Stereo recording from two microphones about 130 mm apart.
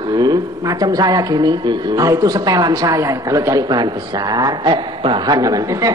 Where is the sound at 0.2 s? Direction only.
30° right (ahead or behind).